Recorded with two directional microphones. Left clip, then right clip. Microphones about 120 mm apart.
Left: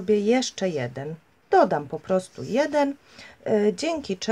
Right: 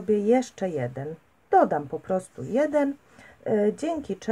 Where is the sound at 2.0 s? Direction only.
20° left (ahead or behind).